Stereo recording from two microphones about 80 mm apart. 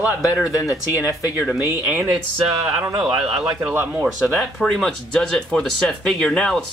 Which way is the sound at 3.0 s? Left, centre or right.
Centre.